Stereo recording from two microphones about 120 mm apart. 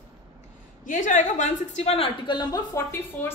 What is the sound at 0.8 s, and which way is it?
A woman's voice, 90° left.